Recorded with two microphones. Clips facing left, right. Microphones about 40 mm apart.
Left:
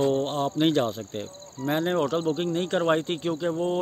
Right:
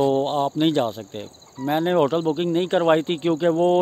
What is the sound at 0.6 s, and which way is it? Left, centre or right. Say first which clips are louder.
Speech: left 1 dB; centre.